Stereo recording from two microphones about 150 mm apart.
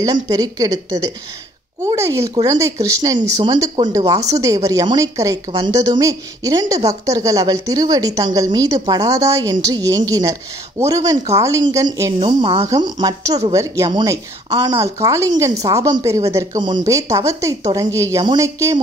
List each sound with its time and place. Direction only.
0.0 s a woman's voice: 25° right (ahead or behind)